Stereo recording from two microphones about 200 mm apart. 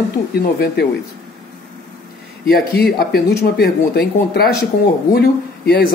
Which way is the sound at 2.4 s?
50° left (ahead or behind).